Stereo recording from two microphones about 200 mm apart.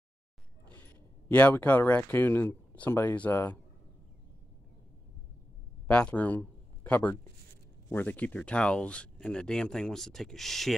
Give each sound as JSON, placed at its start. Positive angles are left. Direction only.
{"t": 0.7, "sound": "a man's voice", "side_deg": 10}
{"t": 5.9, "sound": "speech", "side_deg": 5}